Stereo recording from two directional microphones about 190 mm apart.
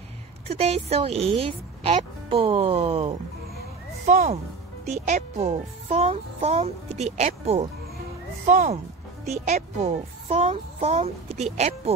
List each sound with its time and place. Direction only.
0.5 s a child's voice: 30° right (ahead or behind)
4.0 s a child's voice: 40° right (ahead or behind)